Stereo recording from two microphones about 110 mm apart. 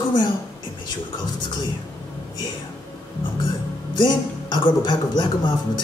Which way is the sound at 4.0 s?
40° left (ahead or behind).